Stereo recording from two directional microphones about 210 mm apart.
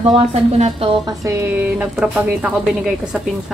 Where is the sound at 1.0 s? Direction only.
15° right (ahead or behind).